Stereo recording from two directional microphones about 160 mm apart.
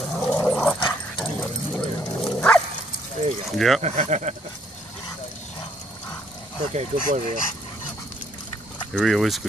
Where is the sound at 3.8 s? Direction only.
45° right (ahead or behind).